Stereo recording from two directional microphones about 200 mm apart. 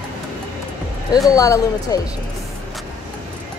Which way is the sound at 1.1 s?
15° left (ahead or behind).